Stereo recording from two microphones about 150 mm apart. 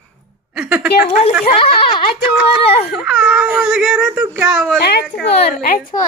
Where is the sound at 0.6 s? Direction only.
10° right (ahead or behind).